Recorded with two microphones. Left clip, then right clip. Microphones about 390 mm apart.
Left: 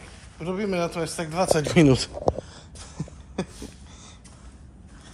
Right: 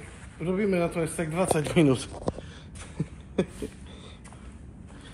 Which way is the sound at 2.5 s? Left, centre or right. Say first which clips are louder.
Right 1 dB; centre.